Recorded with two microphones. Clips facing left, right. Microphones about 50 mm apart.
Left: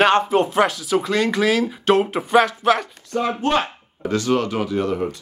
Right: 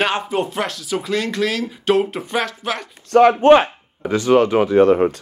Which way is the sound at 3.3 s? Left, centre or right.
Right.